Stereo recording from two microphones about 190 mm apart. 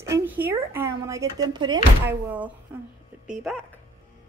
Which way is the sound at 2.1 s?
10° right (ahead or behind).